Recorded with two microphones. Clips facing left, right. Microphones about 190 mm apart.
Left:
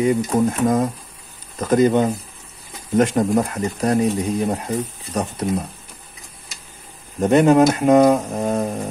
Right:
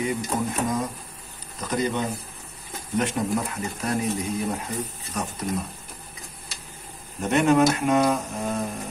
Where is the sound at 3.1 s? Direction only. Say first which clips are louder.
Left 8 dB; 40° left (ahead or behind).